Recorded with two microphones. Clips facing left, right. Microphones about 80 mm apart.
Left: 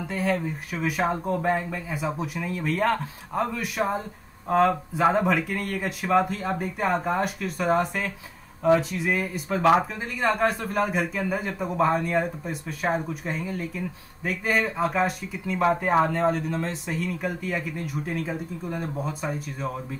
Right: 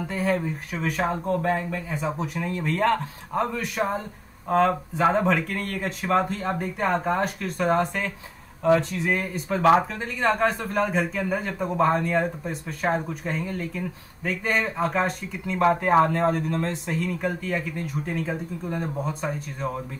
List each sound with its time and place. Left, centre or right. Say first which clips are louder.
0.0 s a man's voice: right 1 dB; centre
1.9 s a man's voice: right 1 dB; centre